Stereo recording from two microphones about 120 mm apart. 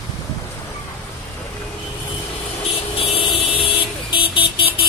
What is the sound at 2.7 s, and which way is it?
Vehicle, 50° left (ahead or behind).